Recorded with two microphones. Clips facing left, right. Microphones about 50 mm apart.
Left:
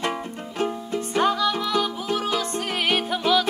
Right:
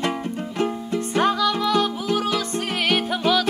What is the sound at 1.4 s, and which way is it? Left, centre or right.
Music, centre.